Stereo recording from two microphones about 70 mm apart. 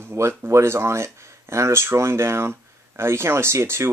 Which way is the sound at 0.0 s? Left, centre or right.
Right.